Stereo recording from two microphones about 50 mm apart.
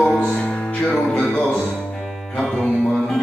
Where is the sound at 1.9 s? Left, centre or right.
Centre.